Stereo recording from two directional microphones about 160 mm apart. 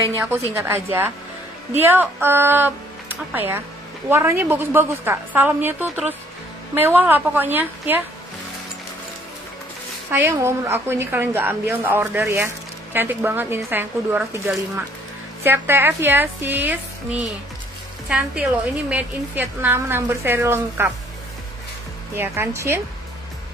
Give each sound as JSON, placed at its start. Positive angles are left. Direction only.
{"t": 0.1, "sound": "a woman's voice", "side_deg": -15}
{"t": 10.1, "sound": "a woman's voice", "side_deg": -15}
{"t": 18.0, "sound": "a woman's voice", "side_deg": -5}
{"t": 22.1, "sound": "a woman's voice", "side_deg": -15}